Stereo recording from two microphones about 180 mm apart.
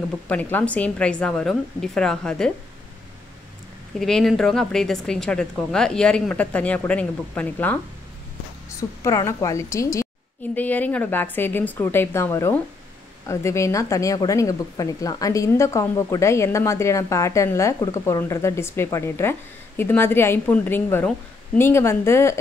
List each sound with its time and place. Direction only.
0.3 s speech: 10° left (ahead or behind)
4.0 s a woman's voice: centre (ahead or behind)